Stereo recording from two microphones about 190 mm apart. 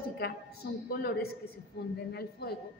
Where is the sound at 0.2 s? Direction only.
55° left (ahead or behind).